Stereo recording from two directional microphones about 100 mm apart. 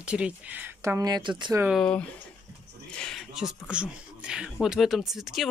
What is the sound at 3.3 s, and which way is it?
Speech, 10° right (ahead or behind).